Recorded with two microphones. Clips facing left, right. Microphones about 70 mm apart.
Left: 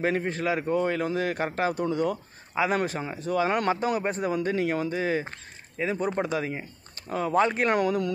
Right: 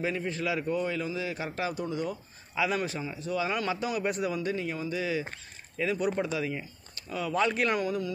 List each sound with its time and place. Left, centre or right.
0.0 s speech: left
2.5 s speech: left
4.9 s speech: left
5.8 s speech: left
7.7 s speech: left